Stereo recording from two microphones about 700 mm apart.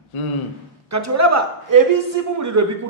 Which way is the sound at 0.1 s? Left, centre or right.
Left.